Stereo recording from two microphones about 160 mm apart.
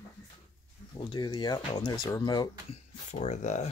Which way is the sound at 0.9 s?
30° left (ahead or behind).